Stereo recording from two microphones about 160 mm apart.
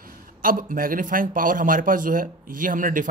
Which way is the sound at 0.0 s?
60° right (ahead or behind).